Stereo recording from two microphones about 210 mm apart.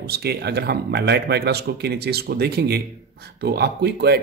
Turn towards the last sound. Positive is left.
turn(degrees=-50)  # may be behind; listen again after turning